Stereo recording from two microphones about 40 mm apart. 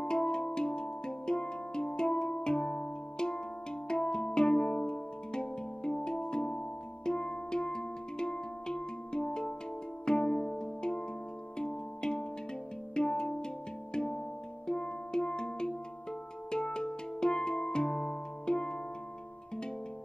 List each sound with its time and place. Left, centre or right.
0.0 s music: centre